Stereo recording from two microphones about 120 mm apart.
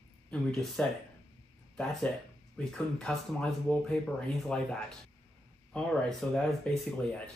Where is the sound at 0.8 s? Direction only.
10° left (ahead or behind).